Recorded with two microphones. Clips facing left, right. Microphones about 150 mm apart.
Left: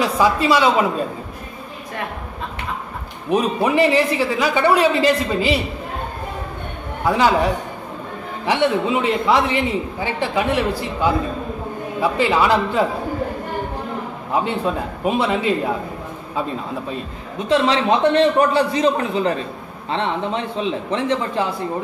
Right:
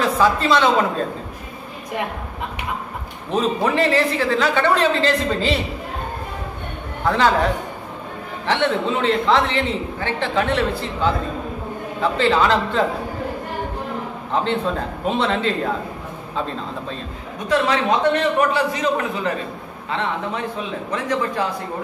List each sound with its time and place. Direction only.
0.0 s a man's voice: 10° left (ahead or behind)
3.3 s a man's voice: 10° left (ahead or behind)
7.1 s a man's voice: 10° left (ahead or behind)
14.3 s a man's voice: 10° left (ahead or behind)
17.5 s a man's voice: 30° left (ahead or behind)